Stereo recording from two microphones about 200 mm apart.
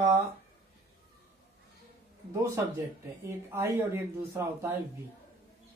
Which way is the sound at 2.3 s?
15° right (ahead or behind).